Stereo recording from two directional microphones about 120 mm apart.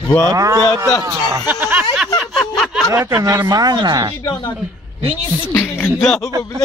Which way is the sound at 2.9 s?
20° right (ahead or behind).